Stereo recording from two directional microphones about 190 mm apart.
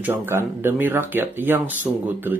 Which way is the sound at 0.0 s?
10° right (ahead or behind).